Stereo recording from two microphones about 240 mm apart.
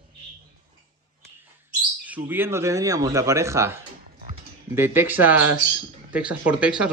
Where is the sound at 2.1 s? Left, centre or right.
Centre.